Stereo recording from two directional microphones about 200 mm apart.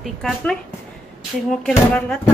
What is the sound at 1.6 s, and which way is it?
Speech, 5° left (ahead or behind).